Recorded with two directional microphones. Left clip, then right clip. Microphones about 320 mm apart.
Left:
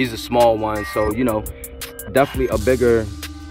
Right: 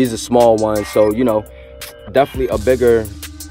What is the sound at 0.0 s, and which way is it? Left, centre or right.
Music, right.